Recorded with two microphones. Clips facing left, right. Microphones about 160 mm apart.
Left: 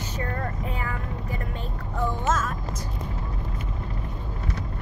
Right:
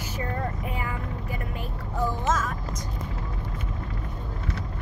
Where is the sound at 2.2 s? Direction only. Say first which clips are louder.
Left 2 dB; centre (ahead or behind).